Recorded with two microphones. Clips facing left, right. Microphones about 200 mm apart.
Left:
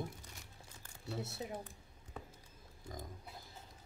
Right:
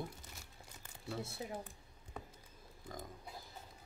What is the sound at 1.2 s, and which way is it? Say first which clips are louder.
Speech: left 2 dB; 20° left (ahead or behind).